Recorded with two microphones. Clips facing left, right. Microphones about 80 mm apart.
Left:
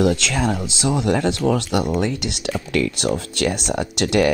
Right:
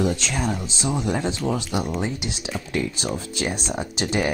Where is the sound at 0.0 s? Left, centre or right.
Left.